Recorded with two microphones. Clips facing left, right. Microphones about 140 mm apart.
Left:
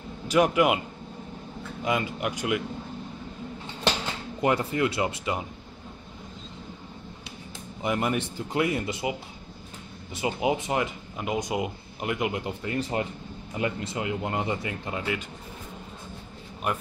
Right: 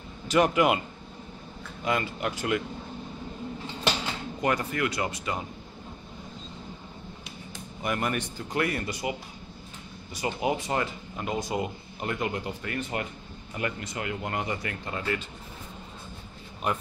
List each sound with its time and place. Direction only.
0.3 s speech: 5° left (ahead or behind)
1.9 s speech: 15° left (ahead or behind)
4.4 s speech: 25° left (ahead or behind)
7.8 s speech: 20° left (ahead or behind)
10.2 s speech: 15° left (ahead or behind)
12.7 s speech: 35° left (ahead or behind)
13.6 s speech: 20° left (ahead or behind)